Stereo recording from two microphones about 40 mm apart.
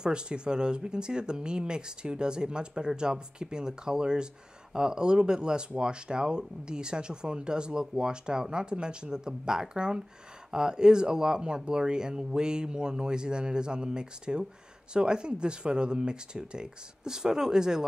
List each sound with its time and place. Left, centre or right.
0.0 s speech: right